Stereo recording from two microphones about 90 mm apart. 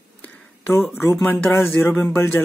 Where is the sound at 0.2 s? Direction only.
20° left (ahead or behind).